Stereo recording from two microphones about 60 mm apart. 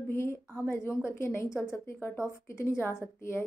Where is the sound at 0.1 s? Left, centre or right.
Left.